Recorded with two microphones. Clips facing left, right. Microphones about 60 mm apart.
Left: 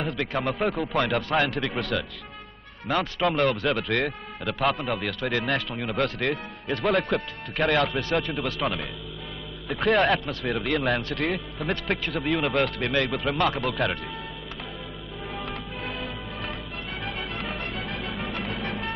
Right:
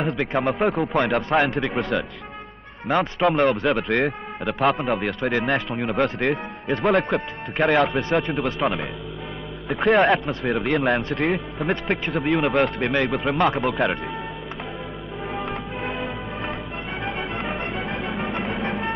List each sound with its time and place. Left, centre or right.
0.0 s a man's voice: centre
4.5 s a man's voice: centre
15.3 s music: right
17.0 s music: right